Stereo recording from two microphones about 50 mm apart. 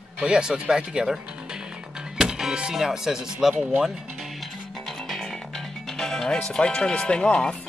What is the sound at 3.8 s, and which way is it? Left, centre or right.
Music, centre.